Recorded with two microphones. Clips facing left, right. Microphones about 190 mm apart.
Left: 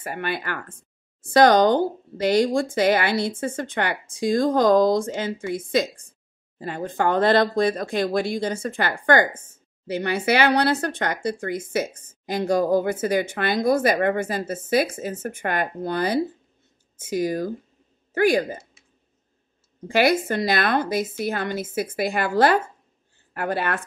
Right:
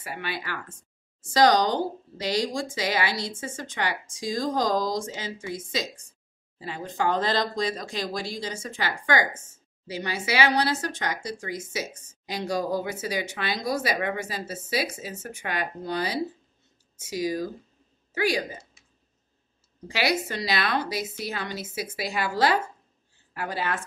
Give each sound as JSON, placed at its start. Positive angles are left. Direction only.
{"t": 0.0, "sound": "a woman's voice", "side_deg": 50}
{"t": 19.9, "sound": "a woman's voice", "side_deg": 50}